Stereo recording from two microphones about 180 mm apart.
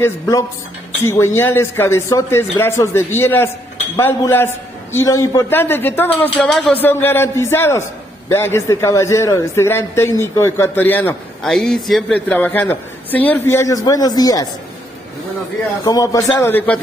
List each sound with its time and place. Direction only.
0.0 s a man's voice: 20° left (ahead or behind)
15.8 s a man's voice: 20° left (ahead or behind)